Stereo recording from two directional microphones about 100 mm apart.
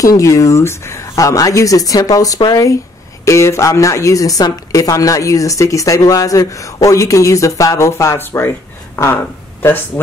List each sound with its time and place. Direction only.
0.0 s a woman's voice: 35° left (ahead or behind)